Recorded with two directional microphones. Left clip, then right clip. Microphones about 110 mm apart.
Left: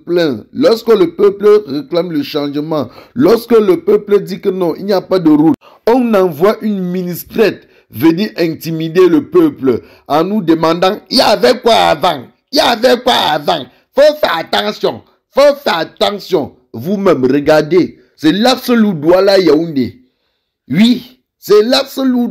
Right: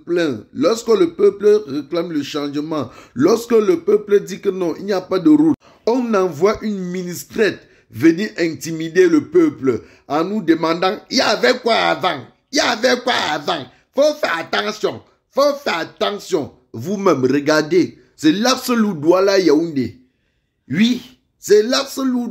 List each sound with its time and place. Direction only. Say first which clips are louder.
0.0 s a man's voice: left 6 dB; 30° left (ahead or behind)
20.7 s speech: left 6 dB; 35° left (ahead or behind)